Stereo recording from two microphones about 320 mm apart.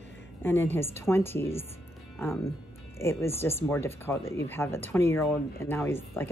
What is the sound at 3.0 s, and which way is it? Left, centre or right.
Speech, centre.